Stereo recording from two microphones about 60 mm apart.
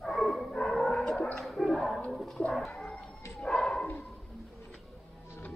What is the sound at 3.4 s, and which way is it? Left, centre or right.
Bow-wow, centre.